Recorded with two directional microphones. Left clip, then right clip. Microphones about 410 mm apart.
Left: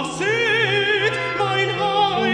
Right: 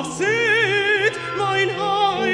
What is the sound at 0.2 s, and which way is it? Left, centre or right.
Music, right.